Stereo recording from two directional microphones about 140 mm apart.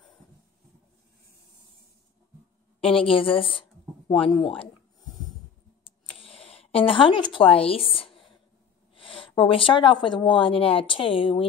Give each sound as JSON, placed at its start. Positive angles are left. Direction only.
{"t": 2.8, "sound": "speech", "side_deg": 40}
{"t": 6.2, "sound": "speech", "side_deg": 40}